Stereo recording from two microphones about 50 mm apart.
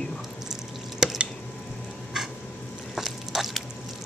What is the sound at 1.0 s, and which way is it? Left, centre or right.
Drip, centre.